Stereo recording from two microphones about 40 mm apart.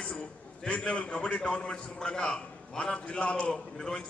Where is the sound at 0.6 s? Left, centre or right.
Left.